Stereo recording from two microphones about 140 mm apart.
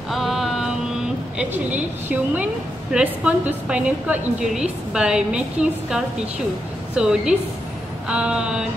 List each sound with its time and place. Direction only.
0.1 s mantra: centre (ahead or behind)
1.4 s a woman's voice: 10° right (ahead or behind)